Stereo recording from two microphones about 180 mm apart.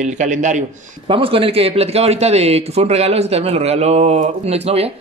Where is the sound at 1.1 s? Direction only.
30° right (ahead or behind).